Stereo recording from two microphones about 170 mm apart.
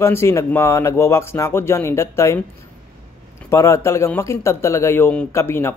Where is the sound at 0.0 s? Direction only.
15° left (ahead or behind).